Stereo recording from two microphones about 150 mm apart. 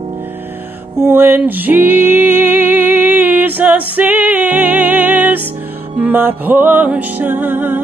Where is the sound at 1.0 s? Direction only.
15° right (ahead or behind).